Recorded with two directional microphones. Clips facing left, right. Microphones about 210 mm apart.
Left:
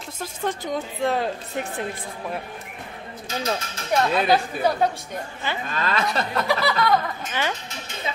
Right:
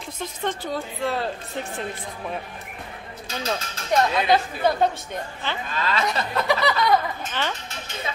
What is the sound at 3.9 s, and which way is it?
A woman's voice, 10° left (ahead or behind).